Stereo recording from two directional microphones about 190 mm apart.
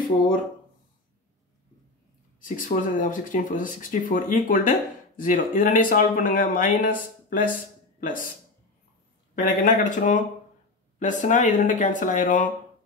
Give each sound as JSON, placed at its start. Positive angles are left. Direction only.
{"t": 2.4, "sound": "speech", "side_deg": 45}
{"t": 9.3, "sound": "speech", "side_deg": 45}